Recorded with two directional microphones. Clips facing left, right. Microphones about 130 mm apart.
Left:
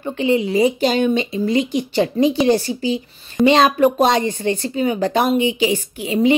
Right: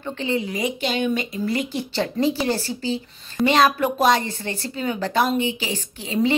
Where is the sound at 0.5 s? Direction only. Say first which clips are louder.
Left 9 dB; 35° left (ahead or behind).